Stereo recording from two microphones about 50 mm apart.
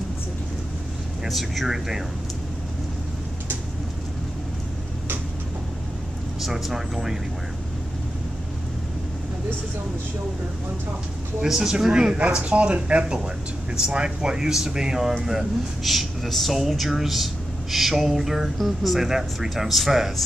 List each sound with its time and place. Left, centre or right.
1.2 s speech: centre
6.4 s speech: centre
11.4 s speech: centre